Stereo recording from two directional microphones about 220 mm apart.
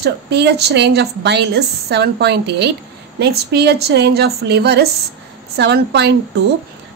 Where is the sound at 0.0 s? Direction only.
50° right (ahead or behind).